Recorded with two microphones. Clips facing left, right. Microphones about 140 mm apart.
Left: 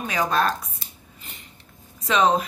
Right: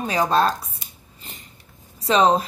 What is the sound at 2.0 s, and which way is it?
Speech, 30° right (ahead or behind).